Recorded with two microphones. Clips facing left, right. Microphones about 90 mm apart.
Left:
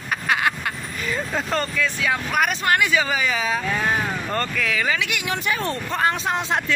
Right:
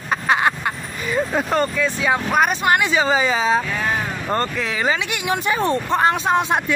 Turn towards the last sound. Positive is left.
turn(degrees=-20)  # may be behind; listen again after turning